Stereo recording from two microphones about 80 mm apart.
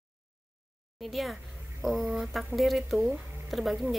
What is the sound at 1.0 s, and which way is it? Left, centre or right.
A woman's voice, centre.